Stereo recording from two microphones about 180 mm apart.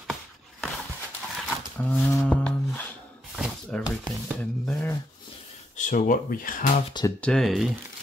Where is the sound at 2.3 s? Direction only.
5° left (ahead or behind).